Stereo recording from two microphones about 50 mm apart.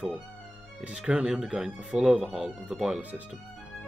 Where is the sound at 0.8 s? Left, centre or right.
Right.